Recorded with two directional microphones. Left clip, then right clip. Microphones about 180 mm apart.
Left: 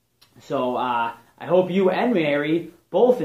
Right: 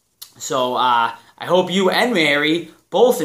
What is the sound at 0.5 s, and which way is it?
Speech, 15° right (ahead or behind).